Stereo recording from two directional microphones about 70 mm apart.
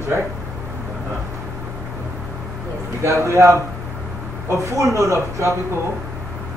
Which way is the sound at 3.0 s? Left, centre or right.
Right.